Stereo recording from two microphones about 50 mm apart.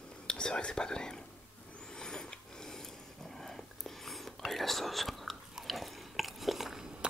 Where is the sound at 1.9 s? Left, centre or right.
Centre.